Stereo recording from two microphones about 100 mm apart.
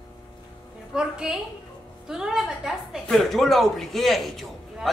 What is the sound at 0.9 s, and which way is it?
A woman's voice, 5° right (ahead or behind).